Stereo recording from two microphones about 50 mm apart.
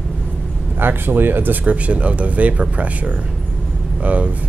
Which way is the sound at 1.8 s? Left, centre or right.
Right.